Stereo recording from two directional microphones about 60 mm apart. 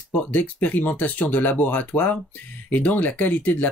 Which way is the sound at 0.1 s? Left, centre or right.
Left.